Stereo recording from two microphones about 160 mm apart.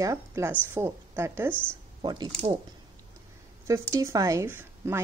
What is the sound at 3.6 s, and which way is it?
A woman's voice, 20° right (ahead or behind).